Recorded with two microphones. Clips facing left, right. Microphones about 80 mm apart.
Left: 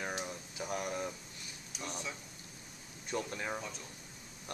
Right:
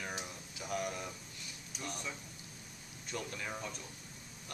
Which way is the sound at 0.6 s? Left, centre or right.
Left.